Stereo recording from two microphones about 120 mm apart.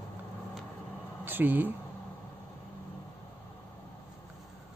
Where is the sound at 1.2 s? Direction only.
15° right (ahead or behind).